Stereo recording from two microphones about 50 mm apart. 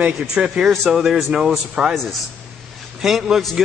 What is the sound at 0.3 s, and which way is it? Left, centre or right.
Speech, centre.